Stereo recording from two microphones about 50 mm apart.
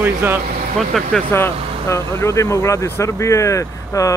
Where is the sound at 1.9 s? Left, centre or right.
Left.